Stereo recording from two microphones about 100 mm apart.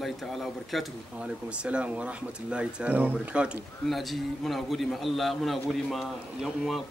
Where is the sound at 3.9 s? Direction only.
Centre (ahead or behind).